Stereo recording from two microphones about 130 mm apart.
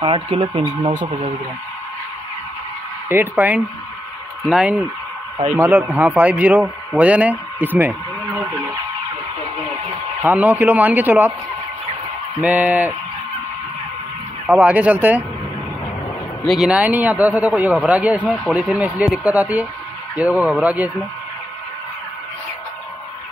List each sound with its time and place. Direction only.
0.0 s speech: 45° right (ahead or behind); by 1.3 s 65° right (ahead or behind)
3.1 s a man's voice: 15° right (ahead or behind)
7.6 s radio: 15° right (ahead or behind)
10.2 s a man's voice: 15° right (ahead or behind)
12.4 s a man's voice: 10° right (ahead or behind)
14.5 s a man's voice: 10° right (ahead or behind)
16.4 s a man's voice: 5° right (ahead or behind)